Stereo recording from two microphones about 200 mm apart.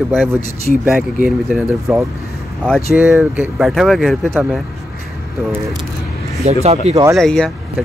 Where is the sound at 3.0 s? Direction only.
10° right (ahead or behind).